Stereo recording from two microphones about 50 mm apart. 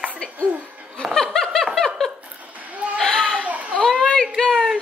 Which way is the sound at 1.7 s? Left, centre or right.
Centre.